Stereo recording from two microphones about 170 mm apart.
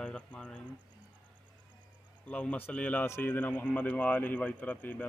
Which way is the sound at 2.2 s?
5° left (ahead or behind).